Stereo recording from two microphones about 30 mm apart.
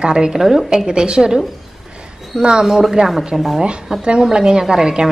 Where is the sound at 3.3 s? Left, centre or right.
Centre.